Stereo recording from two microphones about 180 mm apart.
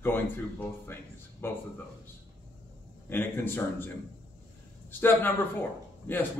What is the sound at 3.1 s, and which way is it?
Speech, 10° left (ahead or behind).